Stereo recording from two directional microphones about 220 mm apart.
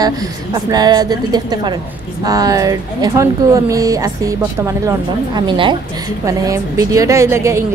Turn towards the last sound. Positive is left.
turn(degrees=-10)  # may be behind; listen again after turning